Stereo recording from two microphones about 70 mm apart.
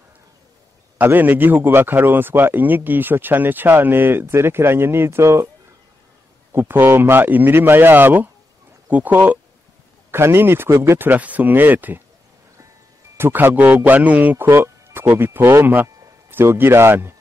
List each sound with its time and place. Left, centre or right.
0.9 s a man's voice: right
6.5 s a man's voice: right
10.1 s a man's voice: right
13.2 s a man's voice: right